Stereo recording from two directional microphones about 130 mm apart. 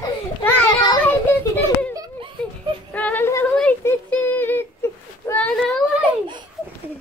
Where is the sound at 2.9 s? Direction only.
10° left (ahead or behind).